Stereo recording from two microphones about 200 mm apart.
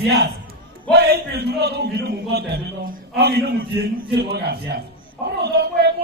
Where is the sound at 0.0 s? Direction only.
55° right (ahead or behind).